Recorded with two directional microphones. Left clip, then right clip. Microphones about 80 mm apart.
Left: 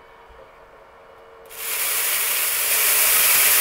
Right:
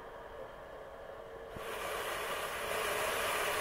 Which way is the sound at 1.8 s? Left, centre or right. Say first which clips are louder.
Left 13 dB; left.